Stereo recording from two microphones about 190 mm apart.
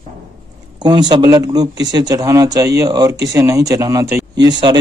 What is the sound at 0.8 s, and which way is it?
Speech, 25° right (ahead or behind).